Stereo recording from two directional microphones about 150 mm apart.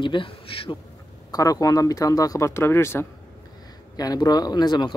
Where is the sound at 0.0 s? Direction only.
35° left (ahead or behind).